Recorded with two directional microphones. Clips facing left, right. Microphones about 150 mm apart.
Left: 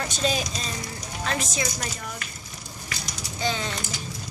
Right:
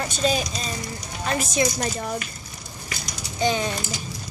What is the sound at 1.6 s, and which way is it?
Speech, 35° right (ahead or behind).